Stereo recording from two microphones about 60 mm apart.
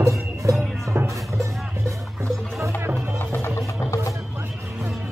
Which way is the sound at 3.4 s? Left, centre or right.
Left.